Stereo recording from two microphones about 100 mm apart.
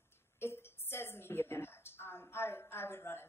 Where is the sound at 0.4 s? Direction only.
25° left (ahead or behind).